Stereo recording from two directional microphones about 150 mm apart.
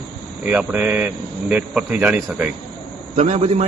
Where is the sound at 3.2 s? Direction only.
50° right (ahead or behind).